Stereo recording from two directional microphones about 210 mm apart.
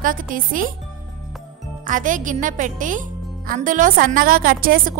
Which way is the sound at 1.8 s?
40° right (ahead or behind).